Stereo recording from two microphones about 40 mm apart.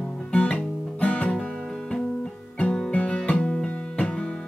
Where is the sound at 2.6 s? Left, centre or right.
Left.